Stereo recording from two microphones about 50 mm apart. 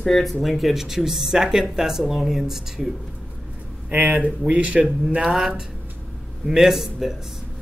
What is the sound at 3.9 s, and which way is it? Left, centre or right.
Speech, right.